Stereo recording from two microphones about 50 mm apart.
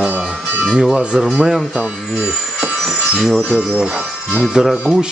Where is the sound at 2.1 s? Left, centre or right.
Right.